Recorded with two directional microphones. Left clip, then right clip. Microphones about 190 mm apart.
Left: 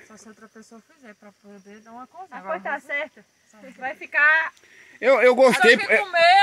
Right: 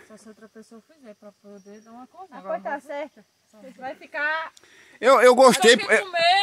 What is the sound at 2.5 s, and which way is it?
Speech, 30° left (ahead or behind).